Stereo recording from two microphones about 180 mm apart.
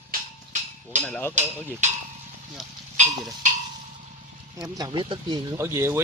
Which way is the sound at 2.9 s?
40° right (ahead or behind).